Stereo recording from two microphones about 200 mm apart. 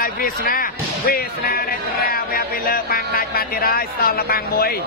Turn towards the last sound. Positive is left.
turn(degrees=50)  # may be behind; listen again after turning